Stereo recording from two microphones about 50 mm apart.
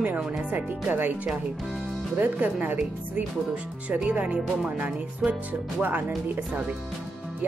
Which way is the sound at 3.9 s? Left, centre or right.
Right.